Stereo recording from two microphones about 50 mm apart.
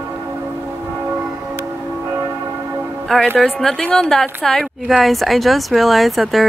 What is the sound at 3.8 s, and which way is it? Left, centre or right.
Speech, centre.